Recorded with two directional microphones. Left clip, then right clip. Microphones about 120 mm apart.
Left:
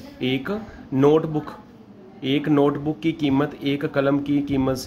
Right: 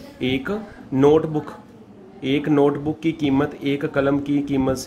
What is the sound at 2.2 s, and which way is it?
Speech, 25° left (ahead or behind).